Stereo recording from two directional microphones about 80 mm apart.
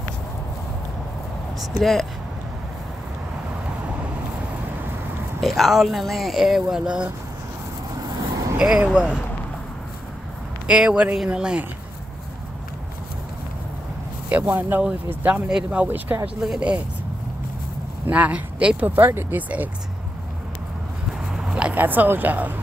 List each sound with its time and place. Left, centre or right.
1.7 s speech: centre
5.4 s speech: centre
8.5 s speech: centre
10.7 s speech: centre
14.3 s speech: right
16.3 s speech: centre
18.0 s speech: centre
21.3 s a sound: centre